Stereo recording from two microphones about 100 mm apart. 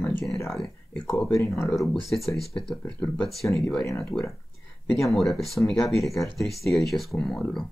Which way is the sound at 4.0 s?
5° left (ahead or behind).